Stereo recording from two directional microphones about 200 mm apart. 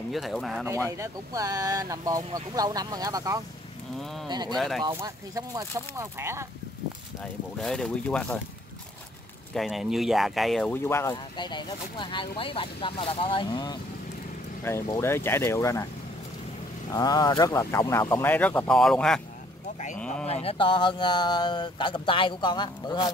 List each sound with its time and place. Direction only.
0.1 s speech: centre (ahead or behind)
0.8 s speech: 15° right (ahead or behind)
4.6 s speech: centre (ahead or behind)
4.8 s speech: 20° right (ahead or behind)
7.6 s speech: 5° left (ahead or behind)
9.5 s speech: centre (ahead or behind); by 13.7 s 25° left (ahead or behind)
14.6 s speech: 10° left (ahead or behind)
16.9 s speech: 20° left (ahead or behind); by 19.2 s 5° left (ahead or behind)
20.2 s speech: 30° left (ahead or behind)